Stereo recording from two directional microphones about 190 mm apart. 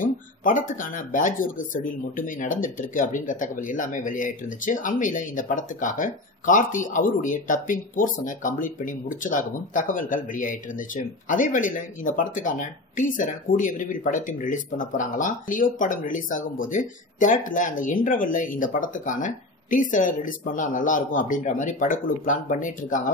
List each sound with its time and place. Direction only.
0.0 s speech: 45° left (ahead or behind)